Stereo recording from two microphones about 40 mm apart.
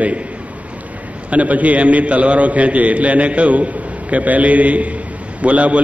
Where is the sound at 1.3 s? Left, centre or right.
Right.